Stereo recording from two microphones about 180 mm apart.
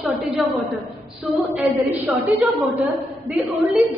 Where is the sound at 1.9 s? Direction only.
10° right (ahead or behind).